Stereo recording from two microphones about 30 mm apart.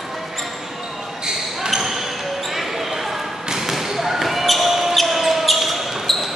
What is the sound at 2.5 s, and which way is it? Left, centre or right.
Basketball bounce, centre.